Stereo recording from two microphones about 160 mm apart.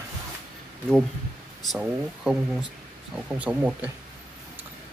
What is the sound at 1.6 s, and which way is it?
Speech, centre (ahead or behind).